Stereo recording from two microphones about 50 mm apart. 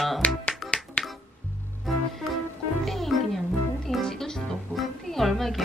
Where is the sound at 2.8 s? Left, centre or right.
Centre.